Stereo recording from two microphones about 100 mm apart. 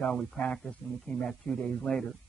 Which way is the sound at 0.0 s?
5° left (ahead or behind).